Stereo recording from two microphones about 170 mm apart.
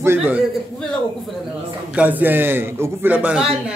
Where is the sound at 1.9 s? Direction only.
10° right (ahead or behind).